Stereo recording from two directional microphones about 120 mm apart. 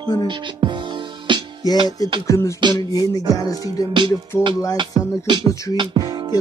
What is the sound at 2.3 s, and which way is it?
Speech, 25° left (ahead or behind).